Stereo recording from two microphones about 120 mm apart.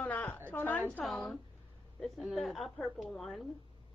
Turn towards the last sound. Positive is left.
turn(degrees=0)  # may be behind; listen again after turning